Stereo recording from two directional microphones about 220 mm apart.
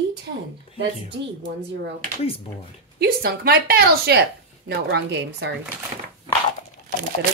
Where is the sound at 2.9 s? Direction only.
45° right (ahead or behind).